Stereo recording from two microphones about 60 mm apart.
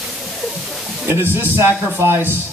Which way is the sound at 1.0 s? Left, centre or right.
Right.